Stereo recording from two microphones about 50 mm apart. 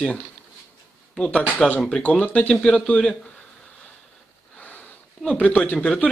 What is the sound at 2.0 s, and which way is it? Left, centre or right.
Speech, left.